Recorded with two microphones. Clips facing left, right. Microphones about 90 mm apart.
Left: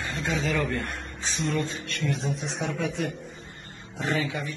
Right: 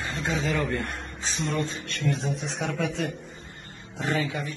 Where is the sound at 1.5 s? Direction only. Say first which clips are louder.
Even; 25° right (ahead or behind).